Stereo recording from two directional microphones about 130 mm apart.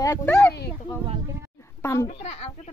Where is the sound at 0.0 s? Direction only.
20° left (ahead or behind).